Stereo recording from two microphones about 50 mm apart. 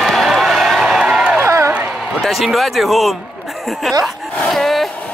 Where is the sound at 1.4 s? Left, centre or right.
Right.